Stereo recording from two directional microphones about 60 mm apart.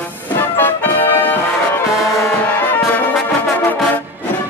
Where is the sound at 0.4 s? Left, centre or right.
Left.